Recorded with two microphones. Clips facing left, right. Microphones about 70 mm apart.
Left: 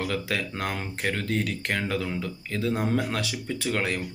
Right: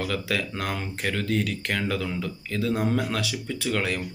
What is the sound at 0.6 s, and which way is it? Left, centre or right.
A man's voice, left.